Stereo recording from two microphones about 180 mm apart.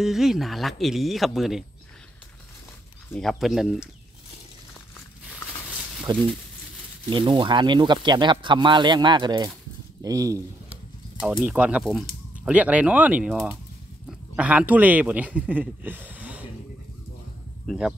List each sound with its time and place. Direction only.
0.0 s speech: centre (ahead or behind)
3.1 s speech: centre (ahead or behind)
6.1 s speech: 25° right (ahead or behind)
11.2 s a man's voice: 10° right (ahead or behind)
17.6 s speech: 5° right (ahead or behind)